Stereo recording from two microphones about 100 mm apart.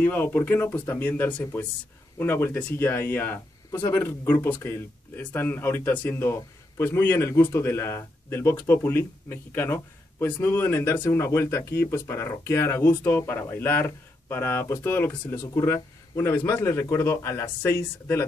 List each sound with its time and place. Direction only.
0.0 s a man's voice: 20° left (ahead or behind)